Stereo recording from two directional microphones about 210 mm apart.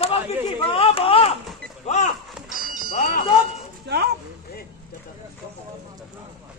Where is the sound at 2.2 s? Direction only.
Centre (ahead or behind).